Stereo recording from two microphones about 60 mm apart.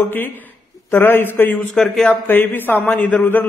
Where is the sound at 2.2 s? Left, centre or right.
Left.